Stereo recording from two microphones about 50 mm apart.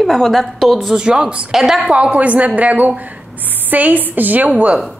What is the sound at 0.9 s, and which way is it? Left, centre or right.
Speech, centre.